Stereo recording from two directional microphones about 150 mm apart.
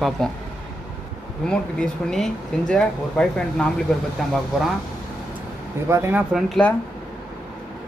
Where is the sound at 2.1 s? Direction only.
5° left (ahead or behind).